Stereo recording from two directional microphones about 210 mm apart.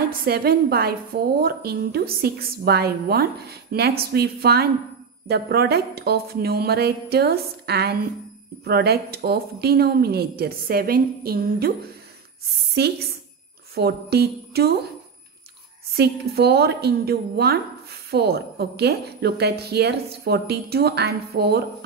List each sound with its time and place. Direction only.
0.2 s a woman's voice: 45° right (ahead or behind)
13.7 s a woman's voice: 50° right (ahead or behind)
15.9 s a woman's voice: 50° right (ahead or behind)